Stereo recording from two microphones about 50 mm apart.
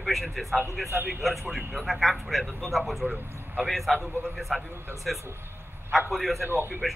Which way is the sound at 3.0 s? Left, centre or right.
Right.